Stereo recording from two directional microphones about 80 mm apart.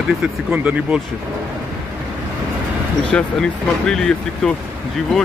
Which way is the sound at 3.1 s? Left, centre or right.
Centre.